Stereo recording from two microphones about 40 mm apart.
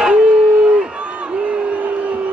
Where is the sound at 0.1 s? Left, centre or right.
Right.